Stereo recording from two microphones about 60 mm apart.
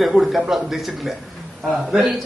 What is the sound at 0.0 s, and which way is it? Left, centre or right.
Speech, centre.